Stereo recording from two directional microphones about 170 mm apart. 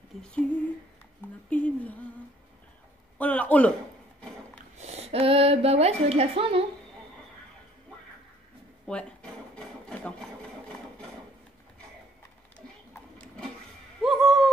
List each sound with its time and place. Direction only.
0.2 s a man's voice: 5° left (ahead or behind)
1.5 s a man's voice: 10° left (ahead or behind)
3.2 s a man's voice: 10° left (ahead or behind)
4.7 s a woman's voice: 40° right (ahead or behind)
8.8 s a sound: 5° left (ahead or behind)
12.9 s printer: 10° left (ahead or behind)
14.0 s owl: centre (ahead or behind)